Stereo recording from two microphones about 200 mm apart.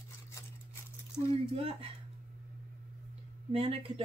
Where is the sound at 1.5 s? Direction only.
30° right (ahead or behind).